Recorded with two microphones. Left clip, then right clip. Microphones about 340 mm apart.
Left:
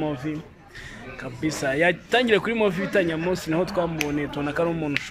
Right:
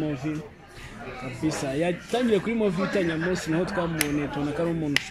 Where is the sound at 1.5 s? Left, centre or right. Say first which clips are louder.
Left 6 dB; left.